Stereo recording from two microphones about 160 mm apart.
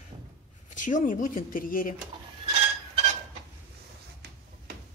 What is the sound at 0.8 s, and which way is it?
Speech, 55° left (ahead or behind).